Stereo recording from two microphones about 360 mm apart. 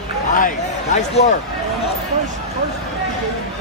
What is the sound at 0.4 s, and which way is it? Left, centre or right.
Speech, left.